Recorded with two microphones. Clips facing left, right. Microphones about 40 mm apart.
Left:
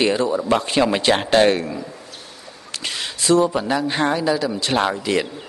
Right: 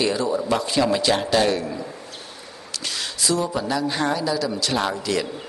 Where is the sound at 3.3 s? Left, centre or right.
Left.